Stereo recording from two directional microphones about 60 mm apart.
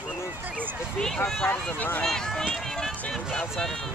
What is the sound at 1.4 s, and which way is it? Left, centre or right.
Speech, left.